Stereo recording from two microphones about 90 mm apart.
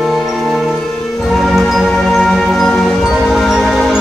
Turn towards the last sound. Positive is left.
turn(degrees=0)  # may be behind; listen again after turning